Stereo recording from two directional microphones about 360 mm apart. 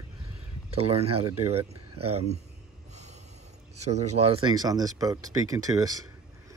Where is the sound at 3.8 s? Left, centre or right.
Centre.